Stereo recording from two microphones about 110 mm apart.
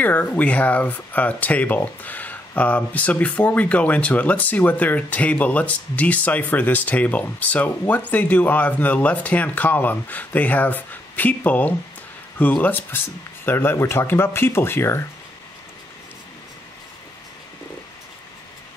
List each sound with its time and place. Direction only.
0.0 s speech: 15° left (ahead or behind)